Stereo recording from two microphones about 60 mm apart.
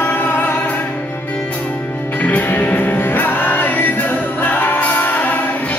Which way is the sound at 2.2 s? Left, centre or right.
Left.